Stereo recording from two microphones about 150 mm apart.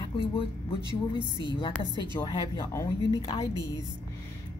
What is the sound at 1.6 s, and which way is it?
A woman's voice, 30° left (ahead or behind).